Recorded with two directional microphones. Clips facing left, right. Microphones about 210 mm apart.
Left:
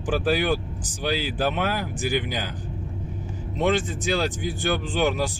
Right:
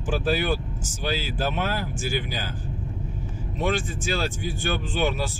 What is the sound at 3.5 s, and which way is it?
Speech, 20° left (ahead or behind).